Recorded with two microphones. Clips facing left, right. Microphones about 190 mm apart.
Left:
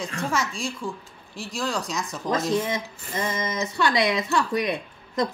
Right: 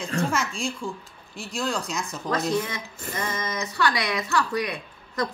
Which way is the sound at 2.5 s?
20° left (ahead or behind).